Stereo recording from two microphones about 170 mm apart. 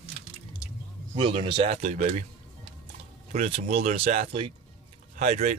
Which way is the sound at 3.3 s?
40° right (ahead or behind).